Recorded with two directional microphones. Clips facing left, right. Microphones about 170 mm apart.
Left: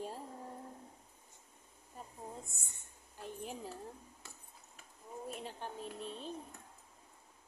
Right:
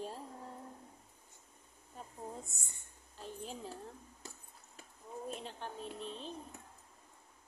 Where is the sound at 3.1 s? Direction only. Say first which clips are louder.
Left 1 dB; 15° left (ahead or behind).